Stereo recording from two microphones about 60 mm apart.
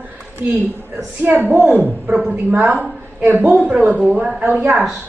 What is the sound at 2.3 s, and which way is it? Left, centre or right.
A woman's voice, right.